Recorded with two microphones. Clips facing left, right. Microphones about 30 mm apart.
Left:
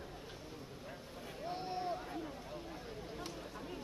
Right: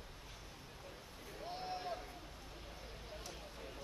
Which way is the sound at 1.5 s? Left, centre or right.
Centre.